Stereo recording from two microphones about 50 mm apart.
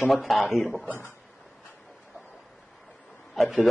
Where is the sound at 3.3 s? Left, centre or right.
Centre.